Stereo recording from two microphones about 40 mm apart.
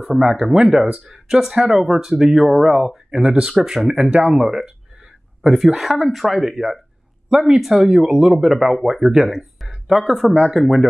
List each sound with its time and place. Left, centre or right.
0.2 s speech: right
1.1 s speech: centre